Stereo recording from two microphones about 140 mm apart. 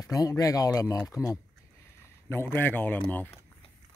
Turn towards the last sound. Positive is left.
turn(degrees=15)  # may be behind; listen again after turning